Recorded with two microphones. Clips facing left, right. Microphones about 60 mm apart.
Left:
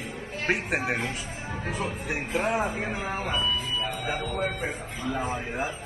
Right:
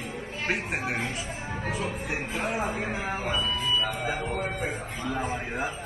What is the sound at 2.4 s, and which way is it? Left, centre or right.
Speech, left.